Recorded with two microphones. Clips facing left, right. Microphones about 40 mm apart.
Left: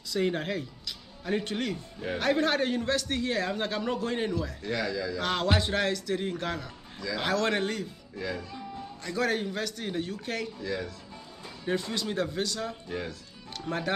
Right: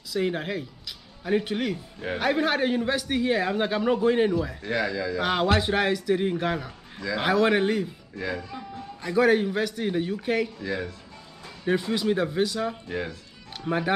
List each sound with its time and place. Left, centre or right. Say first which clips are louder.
0.1 s a man's voice: right 2 dB; centre